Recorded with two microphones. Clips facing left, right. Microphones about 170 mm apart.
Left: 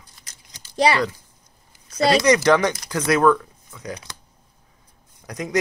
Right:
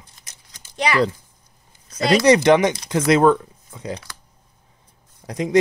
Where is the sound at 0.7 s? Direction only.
35° left (ahead or behind).